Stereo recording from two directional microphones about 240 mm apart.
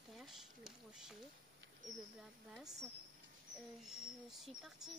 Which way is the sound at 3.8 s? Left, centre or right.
Centre.